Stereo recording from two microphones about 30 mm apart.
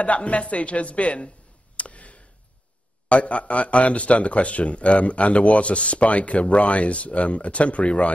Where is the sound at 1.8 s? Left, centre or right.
Left.